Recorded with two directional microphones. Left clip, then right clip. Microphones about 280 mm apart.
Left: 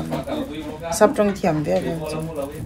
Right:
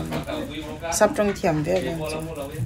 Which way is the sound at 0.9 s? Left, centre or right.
Centre.